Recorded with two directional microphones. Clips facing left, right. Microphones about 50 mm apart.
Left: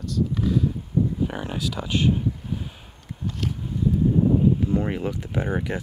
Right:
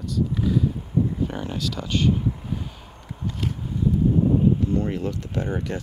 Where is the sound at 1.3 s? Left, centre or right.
Centre.